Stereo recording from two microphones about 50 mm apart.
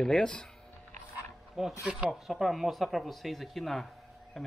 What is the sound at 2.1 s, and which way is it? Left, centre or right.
Speech, centre.